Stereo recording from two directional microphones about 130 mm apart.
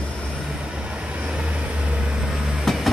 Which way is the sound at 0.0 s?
5° left (ahead or behind).